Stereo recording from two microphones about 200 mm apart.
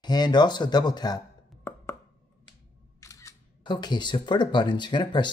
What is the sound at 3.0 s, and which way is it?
Speech, 15° left (ahead or behind).